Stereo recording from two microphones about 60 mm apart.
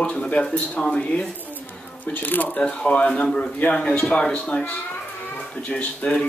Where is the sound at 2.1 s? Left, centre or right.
Left.